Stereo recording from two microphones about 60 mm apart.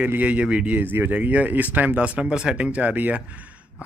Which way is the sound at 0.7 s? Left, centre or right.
Right.